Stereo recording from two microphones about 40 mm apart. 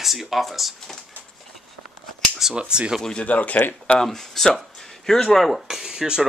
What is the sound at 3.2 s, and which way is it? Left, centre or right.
Speech, left.